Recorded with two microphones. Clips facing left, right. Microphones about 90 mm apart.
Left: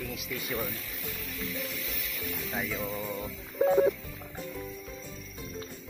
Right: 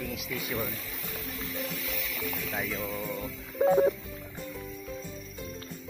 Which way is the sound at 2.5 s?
Centre (ahead or behind).